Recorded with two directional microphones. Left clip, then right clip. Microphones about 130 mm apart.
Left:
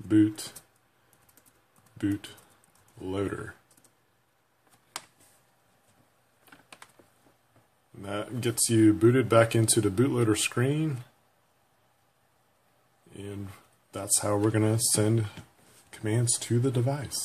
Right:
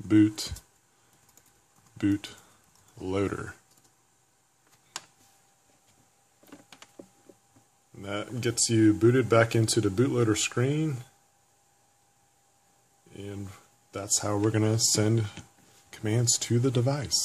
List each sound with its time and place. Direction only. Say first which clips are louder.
0.1 s speech: right 1 dB; 40° right (ahead or behind)
2.0 s speech: right 3 dB; 40° right (ahead or behind)
8.0 s speech: even; 10° right (ahead or behind)
13.1 s a sound: even; 15° right (ahead or behind)
14.0 s speech: left 1 dB; 5° right (ahead or behind)
15.9 s speech: right 2 dB; 30° right (ahead or behind)